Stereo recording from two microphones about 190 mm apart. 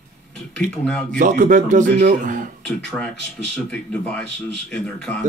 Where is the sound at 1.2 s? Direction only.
45° right (ahead or behind).